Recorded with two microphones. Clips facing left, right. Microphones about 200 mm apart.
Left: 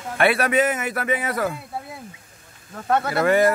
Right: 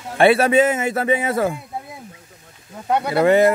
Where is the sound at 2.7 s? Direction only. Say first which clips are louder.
Right 3 dB; 15° right (ahead or behind).